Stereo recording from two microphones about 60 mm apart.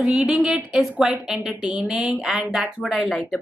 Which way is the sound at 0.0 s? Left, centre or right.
Centre.